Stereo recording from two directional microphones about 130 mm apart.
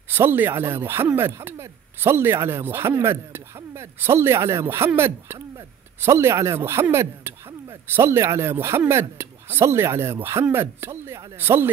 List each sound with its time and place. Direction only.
0.1 s speech: 15° right (ahead or behind)